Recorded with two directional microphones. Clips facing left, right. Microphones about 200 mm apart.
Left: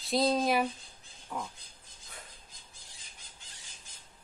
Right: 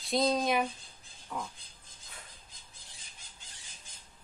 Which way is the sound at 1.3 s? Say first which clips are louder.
Even; 10° left (ahead or behind).